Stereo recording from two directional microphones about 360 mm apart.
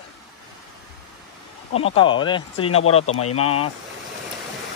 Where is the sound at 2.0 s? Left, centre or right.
Centre.